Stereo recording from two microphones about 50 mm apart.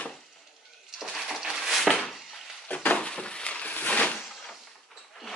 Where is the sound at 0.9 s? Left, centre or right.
Centre.